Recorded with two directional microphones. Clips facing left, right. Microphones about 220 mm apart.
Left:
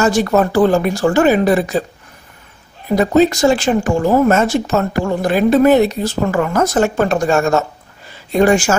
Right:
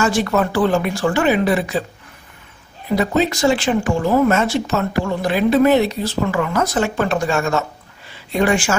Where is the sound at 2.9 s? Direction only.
45° left (ahead or behind).